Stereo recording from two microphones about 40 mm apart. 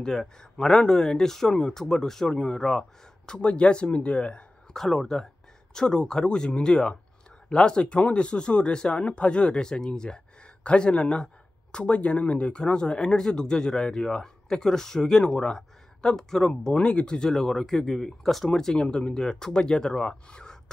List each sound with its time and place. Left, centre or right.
0.0 s speech: centre
3.3 s speech: left
4.7 s speech: centre
16.7 s speech: left